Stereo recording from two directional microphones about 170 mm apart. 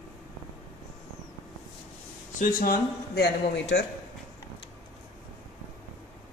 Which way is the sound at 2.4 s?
60° left (ahead or behind).